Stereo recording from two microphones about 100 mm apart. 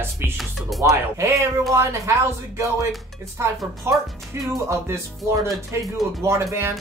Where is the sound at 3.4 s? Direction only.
30° right (ahead or behind).